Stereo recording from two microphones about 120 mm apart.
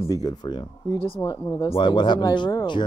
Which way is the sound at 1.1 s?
30° left (ahead or behind).